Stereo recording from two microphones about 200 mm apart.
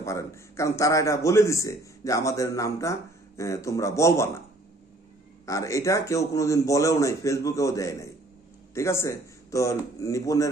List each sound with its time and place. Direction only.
0.0 s a man's voice: 15° left (ahead or behind)
5.4 s a man's voice: 15° left (ahead or behind)